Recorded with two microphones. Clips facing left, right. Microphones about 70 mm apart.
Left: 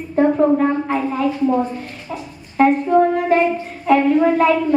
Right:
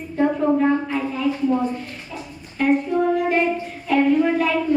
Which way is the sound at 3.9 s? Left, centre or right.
Left.